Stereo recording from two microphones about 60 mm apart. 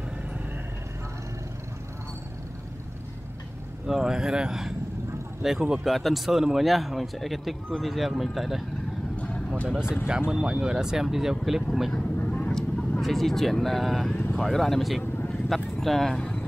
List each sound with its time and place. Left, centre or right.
3.8 s speech: centre
9.1 s vehicle: centre
10.0 s speech: centre
12.3 s vehicle: centre
13.0 s speech: centre